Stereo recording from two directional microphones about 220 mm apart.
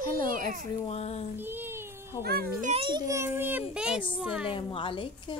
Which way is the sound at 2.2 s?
45° right (ahead or behind).